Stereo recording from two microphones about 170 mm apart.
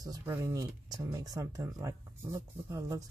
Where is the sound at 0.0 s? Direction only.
20° right (ahead or behind).